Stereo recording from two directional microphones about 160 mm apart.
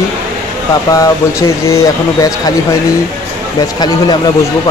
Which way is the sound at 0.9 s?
20° left (ahead or behind).